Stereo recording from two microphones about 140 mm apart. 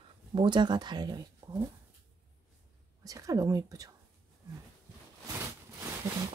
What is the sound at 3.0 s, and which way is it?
Speech, 25° right (ahead or behind).